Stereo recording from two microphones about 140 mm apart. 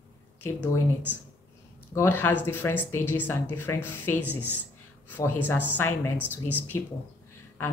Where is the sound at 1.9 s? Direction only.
15° left (ahead or behind).